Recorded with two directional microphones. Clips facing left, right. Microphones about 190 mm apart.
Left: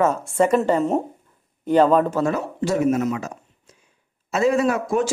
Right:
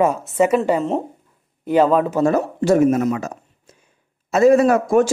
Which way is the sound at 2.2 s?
45° right (ahead or behind).